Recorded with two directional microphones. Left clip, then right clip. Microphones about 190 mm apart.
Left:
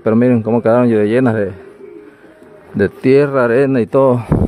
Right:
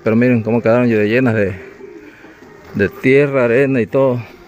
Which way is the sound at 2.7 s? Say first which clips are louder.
Left 1 dB; 20° left (ahead or behind).